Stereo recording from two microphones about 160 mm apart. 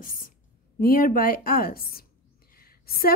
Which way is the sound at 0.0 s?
60° left (ahead or behind).